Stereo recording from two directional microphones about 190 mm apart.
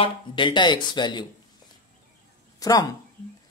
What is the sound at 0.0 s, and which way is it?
Speech, 25° left (ahead or behind).